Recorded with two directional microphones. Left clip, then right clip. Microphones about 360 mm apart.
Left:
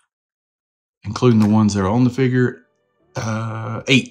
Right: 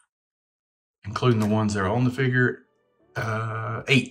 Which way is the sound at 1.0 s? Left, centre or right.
Centre.